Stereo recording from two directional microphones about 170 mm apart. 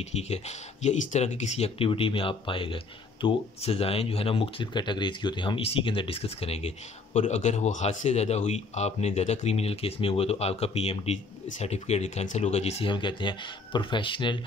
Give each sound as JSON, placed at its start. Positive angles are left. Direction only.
{"t": 0.1, "sound": "speech", "side_deg": 40}